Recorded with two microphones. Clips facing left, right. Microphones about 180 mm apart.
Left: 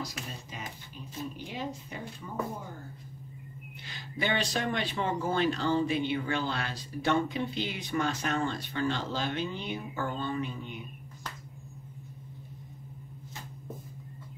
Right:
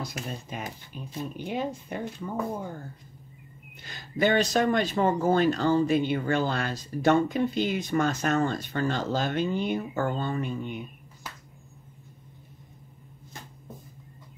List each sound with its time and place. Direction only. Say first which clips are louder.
0.0 s speech: right 4 dB; 55° right (ahead or behind)
3.8 s speech: right 8 dB; 45° right (ahead or behind)